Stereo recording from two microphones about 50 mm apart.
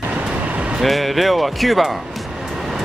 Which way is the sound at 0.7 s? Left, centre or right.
Centre.